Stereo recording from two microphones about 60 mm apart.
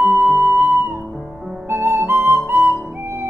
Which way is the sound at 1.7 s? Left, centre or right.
Right.